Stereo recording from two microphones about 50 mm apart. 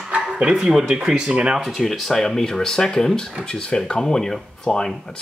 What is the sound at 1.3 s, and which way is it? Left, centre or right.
Speech, right.